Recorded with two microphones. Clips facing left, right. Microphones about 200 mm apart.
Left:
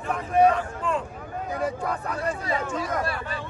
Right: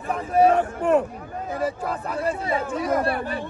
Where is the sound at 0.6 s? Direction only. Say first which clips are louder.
Right 8 dB; 65° right (ahead or behind).